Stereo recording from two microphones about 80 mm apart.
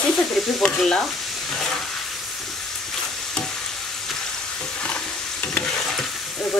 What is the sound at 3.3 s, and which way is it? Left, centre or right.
Stir, centre.